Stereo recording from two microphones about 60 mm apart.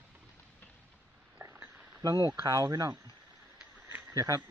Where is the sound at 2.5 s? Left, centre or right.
Right.